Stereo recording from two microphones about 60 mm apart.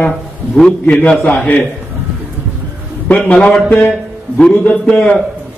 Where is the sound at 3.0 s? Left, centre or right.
Left.